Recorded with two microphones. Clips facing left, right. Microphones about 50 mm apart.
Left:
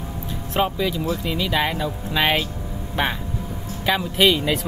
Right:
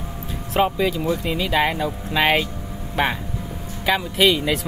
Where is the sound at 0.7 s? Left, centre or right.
Centre.